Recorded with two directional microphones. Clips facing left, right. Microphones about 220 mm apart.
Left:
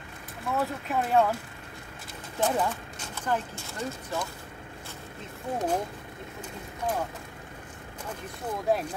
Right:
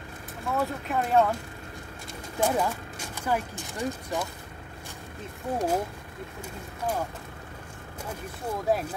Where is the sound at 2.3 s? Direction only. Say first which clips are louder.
Right 1 dB; 10° right (ahead or behind).